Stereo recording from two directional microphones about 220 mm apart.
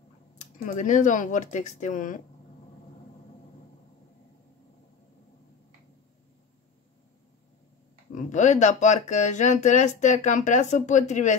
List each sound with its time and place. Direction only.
0.4 s speech: 35° left (ahead or behind)
8.1 s speech: 35° left (ahead or behind)